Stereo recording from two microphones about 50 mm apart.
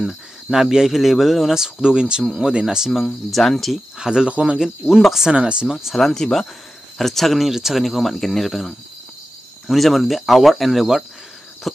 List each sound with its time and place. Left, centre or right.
0.0 s speech: centre
3.3 s speech: centre
4.0 s speech: centre
4.3 s speech: right
4.6 s speech: centre
5.3 s speech: right
5.7 s speech: centre
5.9 s speech: centre